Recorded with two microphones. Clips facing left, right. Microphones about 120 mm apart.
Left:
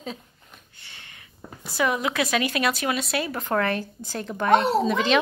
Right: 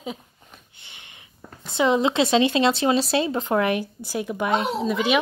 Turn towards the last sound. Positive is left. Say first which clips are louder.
# left 1 dB
turn(degrees=-5)  # may be behind; listen again after turning